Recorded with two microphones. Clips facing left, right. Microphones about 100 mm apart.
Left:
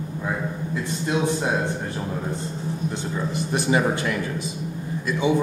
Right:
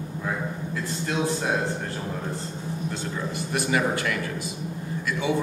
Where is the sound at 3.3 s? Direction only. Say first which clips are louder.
Left 3 dB; 25° left (ahead or behind).